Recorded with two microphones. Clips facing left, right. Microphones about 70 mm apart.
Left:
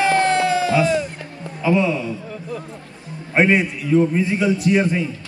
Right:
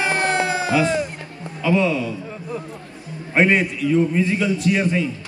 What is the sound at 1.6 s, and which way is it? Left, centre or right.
Speech, centre.